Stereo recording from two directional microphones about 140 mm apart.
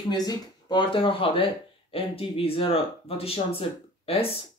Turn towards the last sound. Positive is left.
turn(degrees=45)  # may be behind; listen again after turning